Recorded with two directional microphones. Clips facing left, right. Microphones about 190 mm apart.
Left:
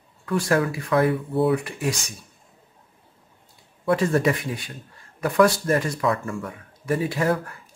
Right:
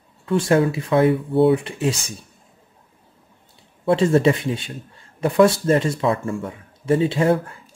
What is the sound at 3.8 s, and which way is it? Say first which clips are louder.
Speech: right 4 dB; 25° right (ahead or behind).